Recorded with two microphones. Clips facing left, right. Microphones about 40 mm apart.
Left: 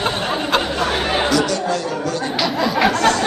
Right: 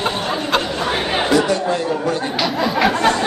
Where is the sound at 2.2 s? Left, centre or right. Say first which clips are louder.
Even; centre.